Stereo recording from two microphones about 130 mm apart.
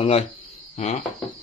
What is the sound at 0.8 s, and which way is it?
Speech, 65° left (ahead or behind).